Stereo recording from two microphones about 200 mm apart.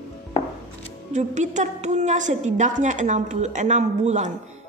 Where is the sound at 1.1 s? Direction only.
35° right (ahead or behind).